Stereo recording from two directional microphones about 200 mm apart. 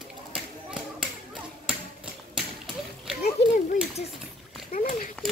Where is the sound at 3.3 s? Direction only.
30° left (ahead or behind).